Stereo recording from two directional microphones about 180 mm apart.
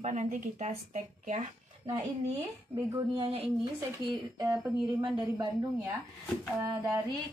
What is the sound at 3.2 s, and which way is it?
Speech, 30° right (ahead or behind).